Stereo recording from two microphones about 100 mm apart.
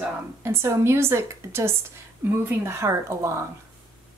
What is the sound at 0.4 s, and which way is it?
A woman's voice, 25° right (ahead or behind).